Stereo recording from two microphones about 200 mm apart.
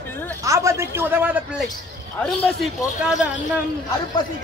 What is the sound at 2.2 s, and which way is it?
Speech, centre (ahead or behind).